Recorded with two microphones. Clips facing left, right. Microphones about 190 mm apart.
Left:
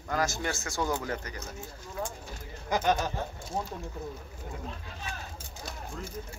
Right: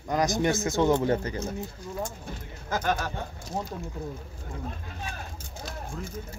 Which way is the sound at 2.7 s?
15° left (ahead or behind).